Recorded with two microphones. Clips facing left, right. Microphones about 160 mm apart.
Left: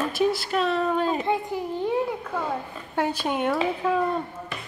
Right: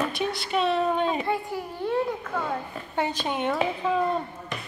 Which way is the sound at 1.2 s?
15° left (ahead or behind).